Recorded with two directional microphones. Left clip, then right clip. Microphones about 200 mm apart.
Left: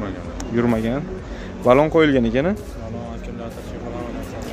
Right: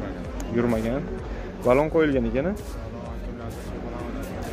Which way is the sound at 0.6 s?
15° left (ahead or behind).